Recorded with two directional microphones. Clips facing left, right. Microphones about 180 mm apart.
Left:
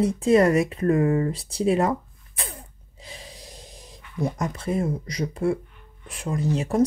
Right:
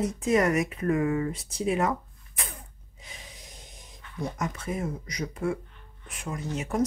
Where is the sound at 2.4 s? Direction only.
30° left (ahead or behind).